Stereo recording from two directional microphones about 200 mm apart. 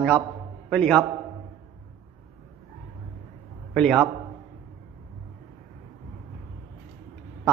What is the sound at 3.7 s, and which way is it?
Speech, centre (ahead or behind).